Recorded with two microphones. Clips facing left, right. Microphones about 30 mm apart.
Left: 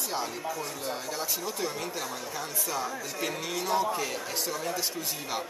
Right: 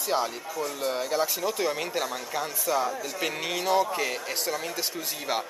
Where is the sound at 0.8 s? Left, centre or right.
Right.